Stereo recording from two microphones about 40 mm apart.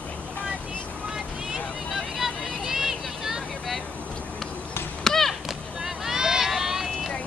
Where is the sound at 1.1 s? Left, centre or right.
Centre.